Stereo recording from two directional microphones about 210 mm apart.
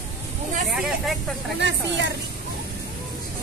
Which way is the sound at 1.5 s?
55° right (ahead or behind).